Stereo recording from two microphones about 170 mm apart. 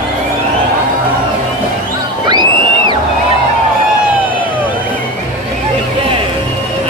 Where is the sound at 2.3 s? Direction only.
25° right (ahead or behind).